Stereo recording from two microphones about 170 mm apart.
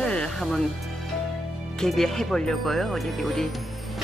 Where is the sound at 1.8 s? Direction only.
Centre (ahead or behind).